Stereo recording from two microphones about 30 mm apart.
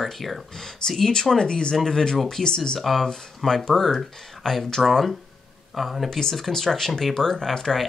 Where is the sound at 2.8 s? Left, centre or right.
Centre.